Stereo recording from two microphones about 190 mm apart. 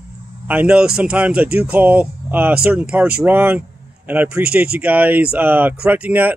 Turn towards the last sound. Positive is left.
turn(degrees=-10)  # may be behind; listen again after turning